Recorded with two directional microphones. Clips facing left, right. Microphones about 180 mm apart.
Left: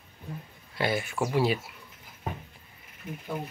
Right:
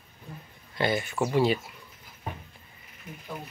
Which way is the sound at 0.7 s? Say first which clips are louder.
Right 1 dB; 5° left (ahead or behind).